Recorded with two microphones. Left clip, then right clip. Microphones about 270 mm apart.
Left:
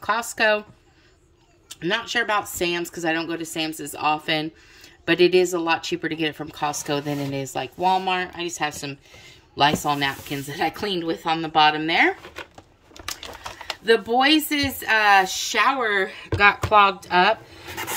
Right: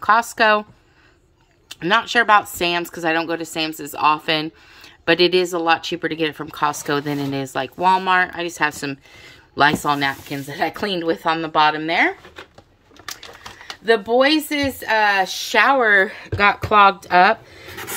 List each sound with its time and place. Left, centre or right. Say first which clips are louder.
0.0 s speech: right 6 dB; centre
1.7 s speech: right 7 dB; centre
13.8 s speech: right 2 dB; centre